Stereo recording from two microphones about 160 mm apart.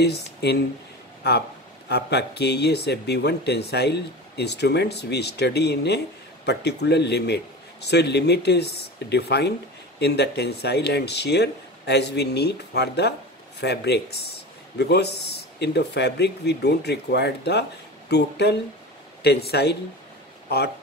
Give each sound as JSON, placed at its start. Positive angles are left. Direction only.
{"t": 0.0, "sound": "speech", "side_deg": 90}